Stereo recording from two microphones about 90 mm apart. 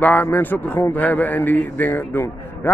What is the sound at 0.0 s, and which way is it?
A man's voice, 20° left (ahead or behind).